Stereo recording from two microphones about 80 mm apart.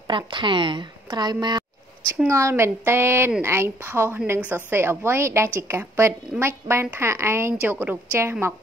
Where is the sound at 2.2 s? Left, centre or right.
Right.